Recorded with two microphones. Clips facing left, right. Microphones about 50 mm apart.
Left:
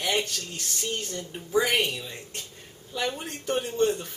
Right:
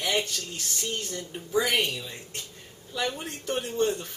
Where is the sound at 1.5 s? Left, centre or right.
Left.